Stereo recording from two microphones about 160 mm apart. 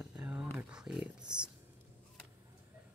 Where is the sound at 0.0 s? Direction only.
5° right (ahead or behind).